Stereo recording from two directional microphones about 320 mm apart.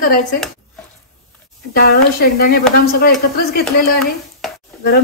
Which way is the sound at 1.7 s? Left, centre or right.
Left.